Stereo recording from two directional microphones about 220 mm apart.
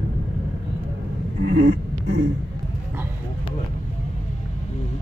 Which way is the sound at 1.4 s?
50° right (ahead or behind).